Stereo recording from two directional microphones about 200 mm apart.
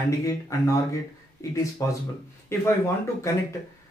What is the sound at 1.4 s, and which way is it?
Speech, 15° left (ahead or behind).